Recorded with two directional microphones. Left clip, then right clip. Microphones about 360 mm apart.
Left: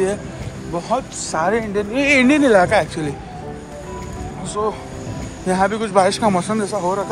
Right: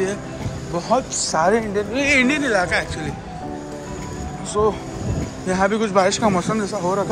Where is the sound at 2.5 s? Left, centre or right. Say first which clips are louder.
Left 6 dB; centre.